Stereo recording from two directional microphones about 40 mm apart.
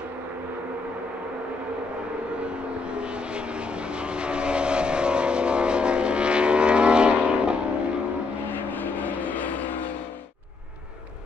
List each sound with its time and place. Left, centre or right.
2.3 s vehicle: right
8.5 s vehicle: left